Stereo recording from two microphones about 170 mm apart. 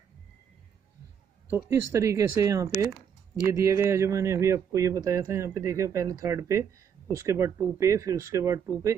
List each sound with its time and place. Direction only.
1.5 s speech: 15° right (ahead or behind)